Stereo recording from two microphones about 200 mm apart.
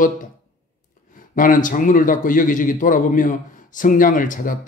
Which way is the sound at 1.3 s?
40° left (ahead or behind).